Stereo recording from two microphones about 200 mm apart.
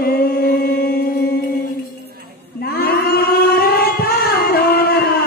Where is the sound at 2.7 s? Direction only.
50° left (ahead or behind).